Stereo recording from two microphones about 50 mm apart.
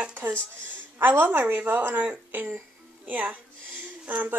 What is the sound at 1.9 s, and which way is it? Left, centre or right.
Speech, right.